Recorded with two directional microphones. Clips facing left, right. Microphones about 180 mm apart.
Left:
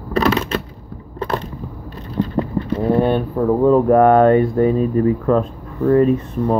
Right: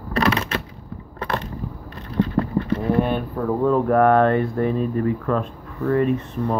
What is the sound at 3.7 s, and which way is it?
Speech, 30° left (ahead or behind).